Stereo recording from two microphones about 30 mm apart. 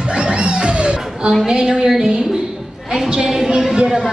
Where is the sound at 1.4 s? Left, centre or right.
Right.